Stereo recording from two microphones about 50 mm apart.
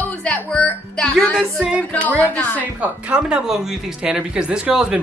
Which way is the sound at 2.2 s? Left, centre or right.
Left.